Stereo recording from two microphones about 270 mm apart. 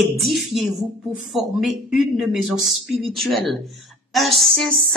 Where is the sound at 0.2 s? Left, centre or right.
Centre.